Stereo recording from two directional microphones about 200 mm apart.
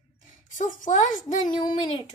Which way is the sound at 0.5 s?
40° left (ahead or behind).